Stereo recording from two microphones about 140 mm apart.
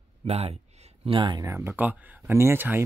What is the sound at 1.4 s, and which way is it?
Speech, 20° right (ahead or behind).